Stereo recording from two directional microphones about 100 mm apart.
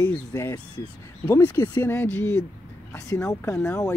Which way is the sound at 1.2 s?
30° left (ahead or behind).